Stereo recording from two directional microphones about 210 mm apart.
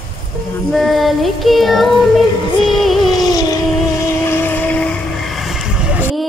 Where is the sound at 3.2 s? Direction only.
20° left (ahead or behind).